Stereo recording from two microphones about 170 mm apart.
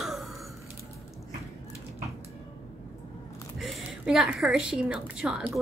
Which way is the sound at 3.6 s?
Centre (ahead or behind).